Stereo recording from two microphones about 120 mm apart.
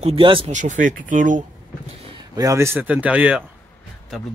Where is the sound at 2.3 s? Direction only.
30° right (ahead or behind); by 3.4 s 10° right (ahead or behind).